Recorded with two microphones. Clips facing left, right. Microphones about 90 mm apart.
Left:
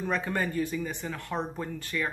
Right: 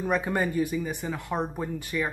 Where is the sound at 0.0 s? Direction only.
15° right (ahead or behind).